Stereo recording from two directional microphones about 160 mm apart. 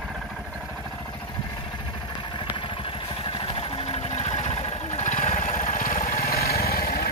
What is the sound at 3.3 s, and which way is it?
Vehicle, 35° left (ahead or behind).